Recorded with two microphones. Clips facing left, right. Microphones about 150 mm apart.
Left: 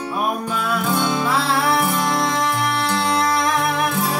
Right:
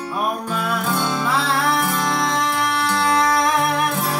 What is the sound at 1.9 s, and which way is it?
Music, 10° left (ahead or behind).